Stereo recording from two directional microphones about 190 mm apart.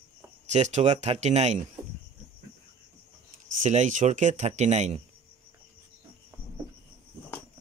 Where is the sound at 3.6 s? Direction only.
40° right (ahead or behind).